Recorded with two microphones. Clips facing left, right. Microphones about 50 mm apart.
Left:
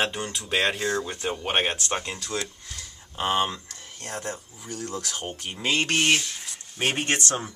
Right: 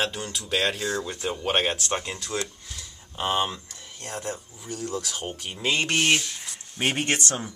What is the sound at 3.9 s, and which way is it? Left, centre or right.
Speech, centre.